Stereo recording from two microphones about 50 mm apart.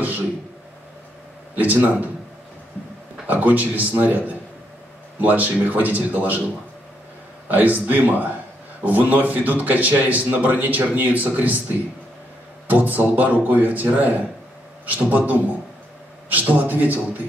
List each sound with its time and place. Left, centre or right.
1.5 s a man's voice: right
3.3 s a man's voice: right
7.4 s a man's voice: right